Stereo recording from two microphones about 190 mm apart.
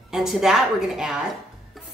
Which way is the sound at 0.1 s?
Centre (ahead or behind).